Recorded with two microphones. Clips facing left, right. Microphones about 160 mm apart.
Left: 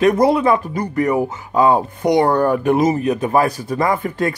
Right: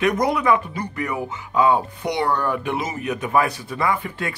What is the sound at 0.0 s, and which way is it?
Speech, 30° left (ahead or behind).